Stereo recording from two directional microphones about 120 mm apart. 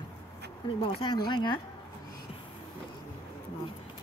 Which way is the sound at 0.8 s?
45° left (ahead or behind).